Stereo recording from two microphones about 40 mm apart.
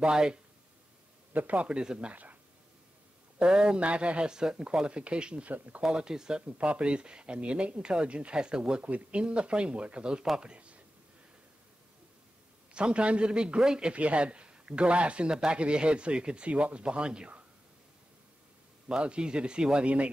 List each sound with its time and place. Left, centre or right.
0.0 s speech: right
1.3 s a man's voice: right
1.7 s speech: right
3.3 s speech: right
6.4 s speech: right
8.8 s speech: right
10.5 s a sound: right
12.7 s speech: right
18.9 s speech: right